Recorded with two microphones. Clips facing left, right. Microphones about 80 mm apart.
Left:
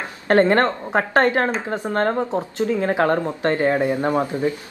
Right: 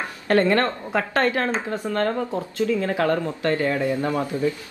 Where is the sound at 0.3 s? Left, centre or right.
Left.